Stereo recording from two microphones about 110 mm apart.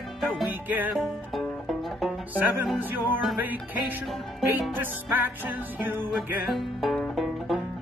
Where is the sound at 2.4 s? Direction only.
15° right (ahead or behind).